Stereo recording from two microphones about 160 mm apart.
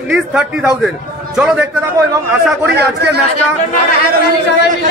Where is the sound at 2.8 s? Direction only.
90° right.